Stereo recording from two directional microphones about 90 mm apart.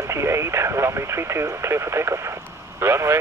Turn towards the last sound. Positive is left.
turn(degrees=-30)  # may be behind; listen again after turning